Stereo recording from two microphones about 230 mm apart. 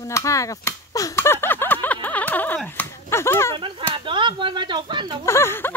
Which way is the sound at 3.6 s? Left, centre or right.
Right.